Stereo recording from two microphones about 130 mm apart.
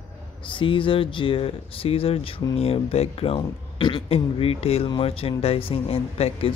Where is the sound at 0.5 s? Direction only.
40° left (ahead or behind).